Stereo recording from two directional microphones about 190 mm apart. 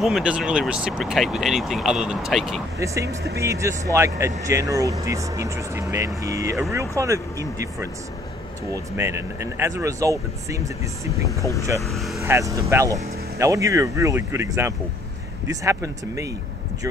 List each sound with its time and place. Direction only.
0.0 s speech: 5° right (ahead or behind)
2.8 s speech: 15° right (ahead or behind)
8.9 s speech: 15° right (ahead or behind)
11.8 s speech: centre (ahead or behind)
12.2 s speech: 15° right (ahead or behind)